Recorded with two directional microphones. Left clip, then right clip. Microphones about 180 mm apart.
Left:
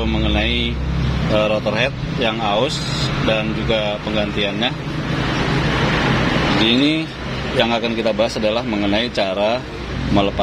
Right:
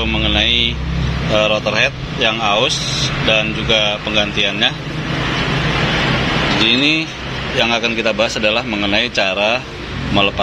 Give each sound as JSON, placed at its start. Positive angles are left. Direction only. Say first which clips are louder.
{"t": 0.0, "sound": "vehicle", "louder": "right 5 dB", "side_deg": 15}
{"t": 1.3, "sound": "speech", "louder": "right 3 dB", "side_deg": 15}
{"t": 6.6, "sound": "speech", "louder": "right 5 dB", "side_deg": 15}